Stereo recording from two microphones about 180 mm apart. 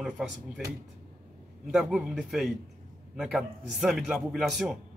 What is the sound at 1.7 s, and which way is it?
A man's voice, 5° right (ahead or behind).